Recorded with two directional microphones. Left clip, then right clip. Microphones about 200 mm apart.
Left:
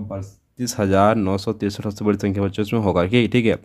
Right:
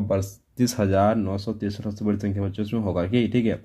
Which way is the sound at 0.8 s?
30° left (ahead or behind).